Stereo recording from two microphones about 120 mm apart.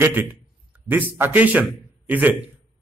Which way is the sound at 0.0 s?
15° right (ahead or behind).